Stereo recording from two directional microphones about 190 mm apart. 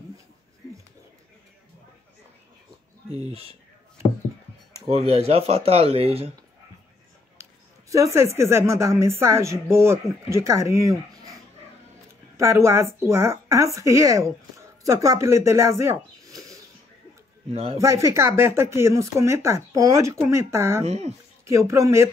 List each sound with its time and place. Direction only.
4.8 s speech: 30° right (ahead or behind)
7.9 s speech: 15° right (ahead or behind)
12.4 s speech: 15° right (ahead or behind)
17.5 s speech: 35° right (ahead or behind)
17.7 s speech: 15° right (ahead or behind)
20.8 s speech: 35° right (ahead or behind)
21.5 s speech: 15° right (ahead or behind)